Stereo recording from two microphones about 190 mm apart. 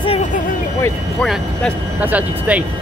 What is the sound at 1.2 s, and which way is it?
Speech, centre (ahead or behind).